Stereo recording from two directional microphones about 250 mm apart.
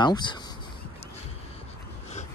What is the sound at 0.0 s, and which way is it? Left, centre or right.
Speech, centre.